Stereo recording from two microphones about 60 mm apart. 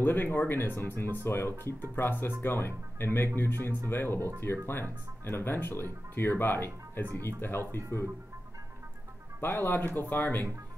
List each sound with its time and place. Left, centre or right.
0.0 s speech: left
9.4 s speech: left